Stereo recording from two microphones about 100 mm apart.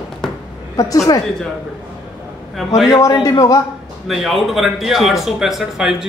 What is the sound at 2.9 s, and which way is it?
Speech, 30° left (ahead or behind).